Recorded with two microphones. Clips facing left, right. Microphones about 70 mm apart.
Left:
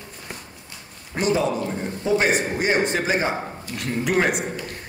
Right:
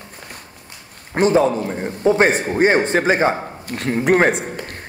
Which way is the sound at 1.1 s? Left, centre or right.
Right.